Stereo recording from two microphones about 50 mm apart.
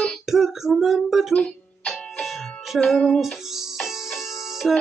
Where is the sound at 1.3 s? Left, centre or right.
Left.